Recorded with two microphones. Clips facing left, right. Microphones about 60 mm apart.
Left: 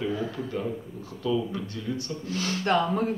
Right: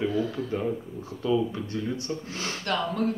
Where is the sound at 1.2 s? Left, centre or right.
Right.